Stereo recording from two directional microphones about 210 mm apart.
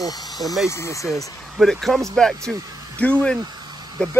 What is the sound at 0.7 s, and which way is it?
Speech, 15° left (ahead or behind).